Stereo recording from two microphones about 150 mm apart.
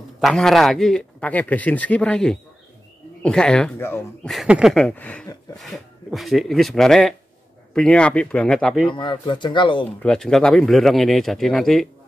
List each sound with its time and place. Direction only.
0.2 s a man's voice: 5° left (ahead or behind)
3.8 s speech: 15° left (ahead or behind)
4.3 s a man's voice: 5° right (ahead or behind)
4.7 s speech: 10° left (ahead or behind)
5.6 s a man's voice: centre (ahead or behind)
8.9 s speech: 35° left (ahead or behind)
10.0 s a man's voice: 5° left (ahead or behind)